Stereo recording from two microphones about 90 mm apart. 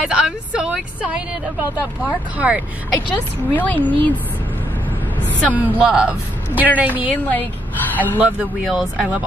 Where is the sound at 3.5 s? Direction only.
20° left (ahead or behind).